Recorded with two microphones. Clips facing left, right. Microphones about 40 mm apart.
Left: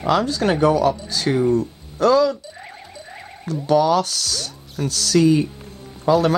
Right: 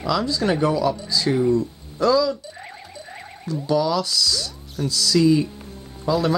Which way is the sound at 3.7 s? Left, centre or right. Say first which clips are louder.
Left 4 dB; left.